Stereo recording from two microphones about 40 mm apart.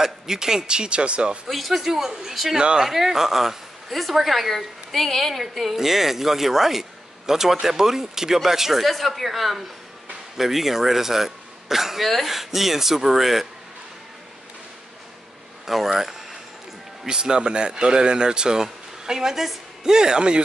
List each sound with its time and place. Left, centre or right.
0.0 s speech: centre
1.5 s a woman's voice: centre
2.5 s speech: right
2.9 s a woman's voice: centre
8.8 s a woman's voice: centre
15.6 s speech: centre
17.0 s speech: centre
19.8 s a woman's voice: centre